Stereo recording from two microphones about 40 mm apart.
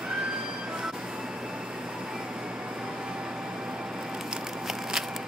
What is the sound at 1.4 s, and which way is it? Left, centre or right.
Vehicle, right.